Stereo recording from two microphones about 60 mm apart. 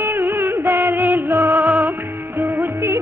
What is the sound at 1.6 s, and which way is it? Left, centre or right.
Music, right.